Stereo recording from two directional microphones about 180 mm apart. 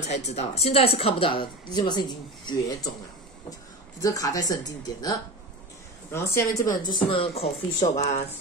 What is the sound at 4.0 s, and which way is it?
Speech, 20° left (ahead or behind).